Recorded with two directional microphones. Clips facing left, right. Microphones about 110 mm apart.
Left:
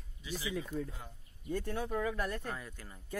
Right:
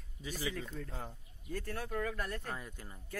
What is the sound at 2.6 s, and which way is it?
Speech, 15° right (ahead or behind).